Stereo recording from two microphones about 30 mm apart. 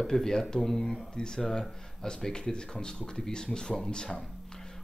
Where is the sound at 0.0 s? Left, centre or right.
Centre.